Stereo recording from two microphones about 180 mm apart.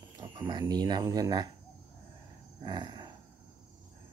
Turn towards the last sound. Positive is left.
turn(degrees=-25)  # may be behind; listen again after turning